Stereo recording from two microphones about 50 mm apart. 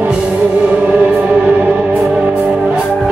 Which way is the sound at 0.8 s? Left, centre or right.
Centre.